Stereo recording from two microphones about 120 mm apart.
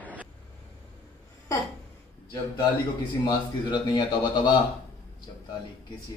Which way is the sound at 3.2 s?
35° left (ahead or behind).